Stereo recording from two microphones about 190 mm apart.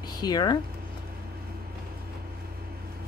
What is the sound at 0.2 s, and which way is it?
Speech, 20° left (ahead or behind).